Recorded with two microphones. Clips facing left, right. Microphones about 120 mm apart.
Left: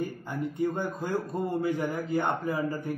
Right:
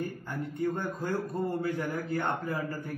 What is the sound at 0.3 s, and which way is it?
A man's voice, 15° left (ahead or behind).